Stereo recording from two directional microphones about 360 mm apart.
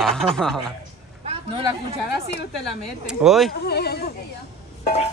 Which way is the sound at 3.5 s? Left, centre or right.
Left.